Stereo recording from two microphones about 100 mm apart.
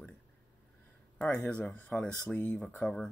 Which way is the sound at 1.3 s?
15° left (ahead or behind).